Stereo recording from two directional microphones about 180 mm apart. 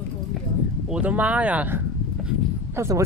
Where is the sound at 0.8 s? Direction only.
5° right (ahead or behind).